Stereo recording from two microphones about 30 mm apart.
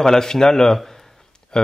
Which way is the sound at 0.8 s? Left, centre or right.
Centre.